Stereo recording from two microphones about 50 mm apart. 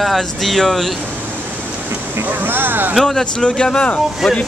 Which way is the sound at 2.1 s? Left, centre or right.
Right.